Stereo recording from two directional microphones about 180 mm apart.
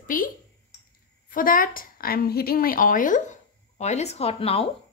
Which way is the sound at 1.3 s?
50° left (ahead or behind).